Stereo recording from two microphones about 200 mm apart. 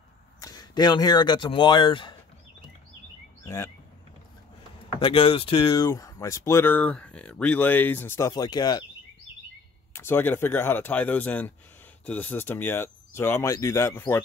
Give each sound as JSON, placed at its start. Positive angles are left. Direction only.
{"t": 0.4, "sound": "speech", "side_deg": 20}
{"t": 3.4, "sound": "speech", "side_deg": 15}
{"t": 5.0, "sound": "speech", "side_deg": 25}
{"t": 9.9, "sound": "speech", "side_deg": 10}